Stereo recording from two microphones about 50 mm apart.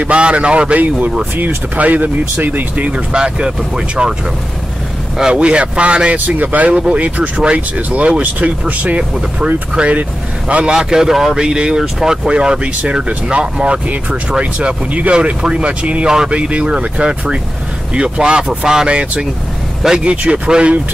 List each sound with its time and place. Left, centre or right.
0.0 s speech: right
1.3 s speech: right; by 4.1 s centre
5.1 s speech: centre
5.4 s speech: right
6.1 s speech: right
10.5 s a man's voice: centre
11.4 s speech: centre